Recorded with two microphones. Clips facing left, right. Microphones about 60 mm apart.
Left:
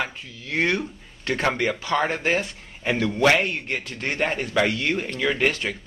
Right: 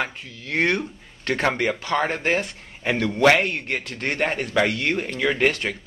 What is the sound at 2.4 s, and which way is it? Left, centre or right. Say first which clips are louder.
Speech: right 1 dB; right.